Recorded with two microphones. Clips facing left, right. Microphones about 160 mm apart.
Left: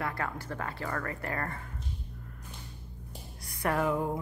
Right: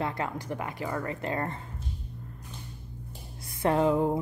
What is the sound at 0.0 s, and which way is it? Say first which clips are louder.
A woman's voice: right 3 dB; 20° right (ahead or behind).